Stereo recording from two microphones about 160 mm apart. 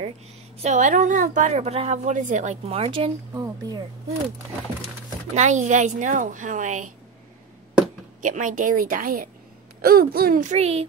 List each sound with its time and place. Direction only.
0.6 s a woman's voice: 45° right (ahead or behind)
3.3 s speech: 25° right (ahead or behind)
5.3 s a woman's voice: 45° right (ahead or behind)
8.2 s a woman's voice: 50° right (ahead or behind)